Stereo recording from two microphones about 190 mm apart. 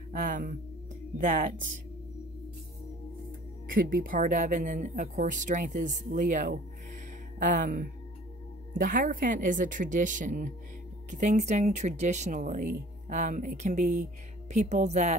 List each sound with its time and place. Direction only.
0.1 s speech: 45° right (ahead or behind)
3.6 s speech: 50° right (ahead or behind)